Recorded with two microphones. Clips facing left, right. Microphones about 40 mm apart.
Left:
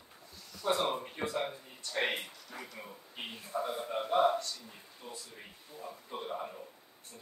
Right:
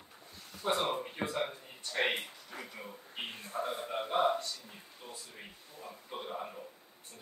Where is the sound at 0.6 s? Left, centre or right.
Right.